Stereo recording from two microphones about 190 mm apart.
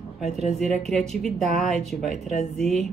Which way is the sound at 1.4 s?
35° right (ahead or behind).